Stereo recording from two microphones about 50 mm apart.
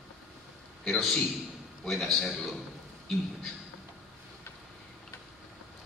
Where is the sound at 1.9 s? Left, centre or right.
Centre.